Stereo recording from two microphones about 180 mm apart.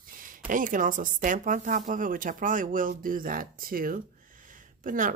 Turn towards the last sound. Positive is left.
turn(degrees=-45)  # may be behind; listen again after turning